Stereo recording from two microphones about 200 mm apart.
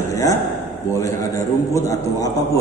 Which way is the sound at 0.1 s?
15° left (ahead or behind).